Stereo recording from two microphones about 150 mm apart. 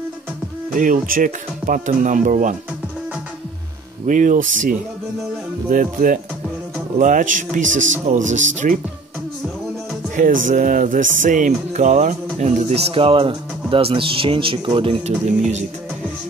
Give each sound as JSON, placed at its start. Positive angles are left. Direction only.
{"t": 0.7, "sound": "speech", "side_deg": -65}
{"t": 4.0, "sound": "speech", "side_deg": -60}
{"t": 10.1, "sound": "speech", "side_deg": -60}